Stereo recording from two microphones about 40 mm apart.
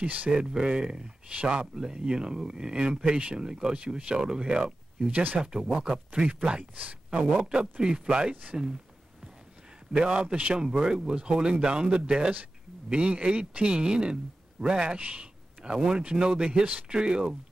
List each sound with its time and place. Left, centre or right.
0.0 s speech: right
0.3 s speech: centre
5.1 s speech: right
5.4 s speech: centre
6.8 s speech: right
7.8 s speech: right
9.9 s speech: right
15.0 s speech: right
15.6 s speech: right